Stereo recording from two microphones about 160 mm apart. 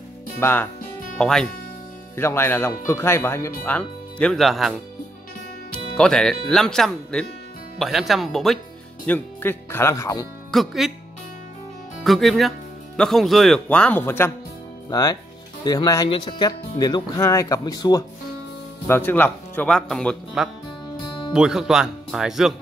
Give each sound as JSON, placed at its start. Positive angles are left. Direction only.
{"t": 0.4, "sound": "speech", "side_deg": 10}
{"t": 2.1, "sound": "speech", "side_deg": 15}
{"t": 5.9, "sound": "speech", "side_deg": 5}
{"t": 10.5, "sound": "speech", "side_deg": 0}
{"t": 12.0, "sound": "speech", "side_deg": 0}
{"t": 18.9, "sound": "speech", "side_deg": 15}